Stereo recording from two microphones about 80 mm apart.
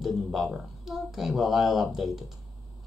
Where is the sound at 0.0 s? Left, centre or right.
Centre.